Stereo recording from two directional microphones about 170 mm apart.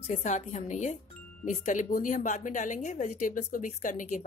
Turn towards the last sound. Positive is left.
turn(degrees=50)  # may be behind; listen again after turning